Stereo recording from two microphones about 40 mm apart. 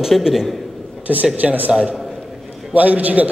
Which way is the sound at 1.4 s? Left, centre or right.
Right.